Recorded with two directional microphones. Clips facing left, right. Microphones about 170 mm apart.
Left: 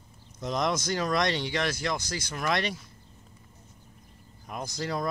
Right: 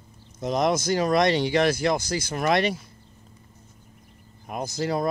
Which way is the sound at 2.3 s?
50° right (ahead or behind).